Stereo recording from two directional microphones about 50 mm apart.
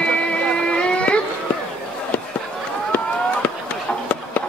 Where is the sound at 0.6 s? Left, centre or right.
Left.